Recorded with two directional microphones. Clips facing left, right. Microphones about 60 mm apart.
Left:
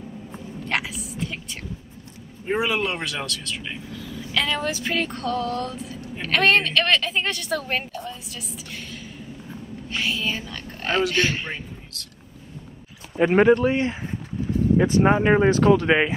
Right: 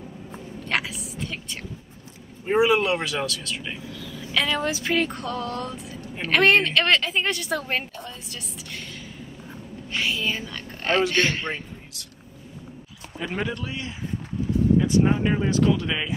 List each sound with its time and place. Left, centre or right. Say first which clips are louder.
0.7 s a sound: even; centre
2.5 s speech: right 4 dB; centre
4.3 s music: even; centre
6.2 s a woman's voice: right 1 dB; centre
9.8 s speech: even; centre
13.2 s speech: left 13 dB; left